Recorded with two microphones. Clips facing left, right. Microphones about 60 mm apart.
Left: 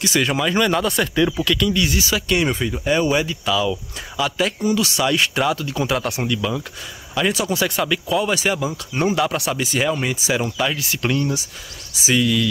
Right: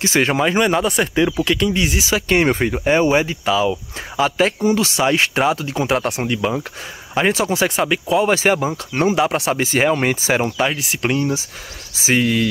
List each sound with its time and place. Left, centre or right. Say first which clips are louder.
0.0 s speech: right 3 dB; right
0.6 s speech: right 2 dB; right
2.2 s speech: right 7 dB; right
9.0 s speech: right 3 dB; right
9.3 s speech: right 4 dB; right
10.7 s speech: right 2 dB; right